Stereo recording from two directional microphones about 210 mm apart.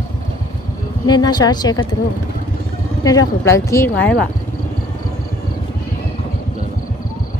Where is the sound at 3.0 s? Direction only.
15° left (ahead or behind).